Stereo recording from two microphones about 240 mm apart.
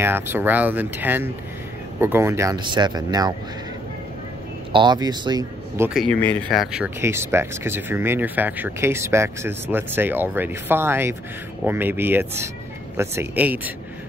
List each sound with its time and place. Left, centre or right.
0.0 s speech: centre
4.7 s speech: centre
5.9 s speech: centre